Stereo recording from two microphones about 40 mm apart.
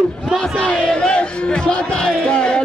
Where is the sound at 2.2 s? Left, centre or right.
Left.